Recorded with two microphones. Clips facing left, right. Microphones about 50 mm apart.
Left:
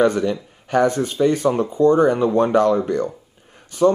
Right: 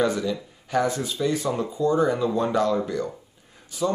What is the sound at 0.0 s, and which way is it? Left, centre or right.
Speech, left.